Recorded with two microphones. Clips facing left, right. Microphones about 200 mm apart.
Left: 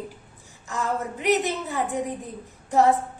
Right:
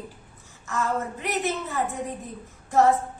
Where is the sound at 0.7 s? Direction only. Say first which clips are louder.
Even; 15° left (ahead or behind).